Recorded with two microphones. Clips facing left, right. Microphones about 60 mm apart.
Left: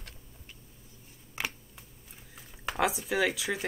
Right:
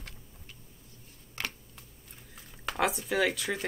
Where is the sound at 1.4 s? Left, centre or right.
Centre.